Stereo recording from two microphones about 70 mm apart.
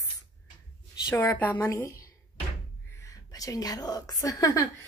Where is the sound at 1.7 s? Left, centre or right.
Left.